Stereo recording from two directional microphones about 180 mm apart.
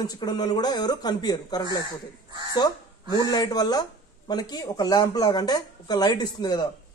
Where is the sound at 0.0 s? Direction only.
20° left (ahead or behind).